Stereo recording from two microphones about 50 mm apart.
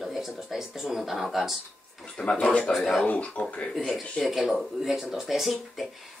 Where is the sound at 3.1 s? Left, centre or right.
Left.